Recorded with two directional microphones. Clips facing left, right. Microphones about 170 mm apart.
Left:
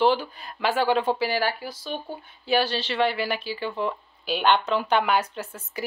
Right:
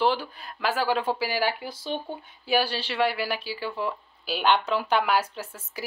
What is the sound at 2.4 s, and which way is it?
Speech, 10° right (ahead or behind).